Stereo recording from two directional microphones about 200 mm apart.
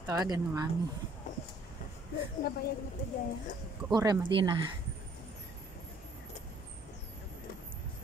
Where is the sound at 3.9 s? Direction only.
20° right (ahead or behind).